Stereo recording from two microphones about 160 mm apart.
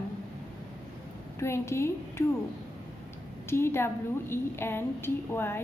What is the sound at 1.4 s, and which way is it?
Speech, 15° left (ahead or behind).